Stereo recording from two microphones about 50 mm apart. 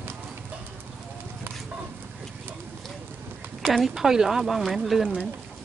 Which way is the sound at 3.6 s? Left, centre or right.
Centre.